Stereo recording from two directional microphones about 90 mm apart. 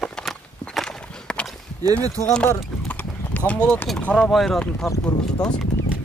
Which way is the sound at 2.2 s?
40° left (ahead or behind).